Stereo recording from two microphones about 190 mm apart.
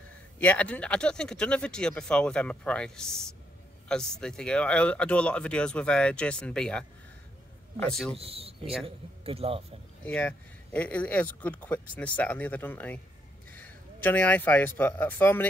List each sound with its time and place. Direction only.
0.4 s speech: 10° left (ahead or behind)
8.2 s a man's voice: 30° right (ahead or behind)
10.0 s speech: 5° left (ahead or behind)